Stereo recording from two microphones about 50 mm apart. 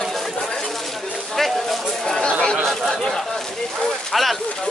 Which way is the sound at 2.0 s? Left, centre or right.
Centre.